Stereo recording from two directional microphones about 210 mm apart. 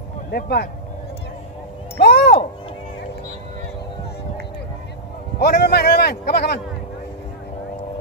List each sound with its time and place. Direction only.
0.3 s a man's voice: 50° left (ahead or behind)
2.0 s a sound: 50° left (ahead or behind)
5.4 s a man's voice: 50° left (ahead or behind)